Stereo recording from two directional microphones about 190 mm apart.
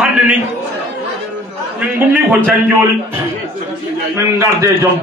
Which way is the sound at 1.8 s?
5° right (ahead or behind).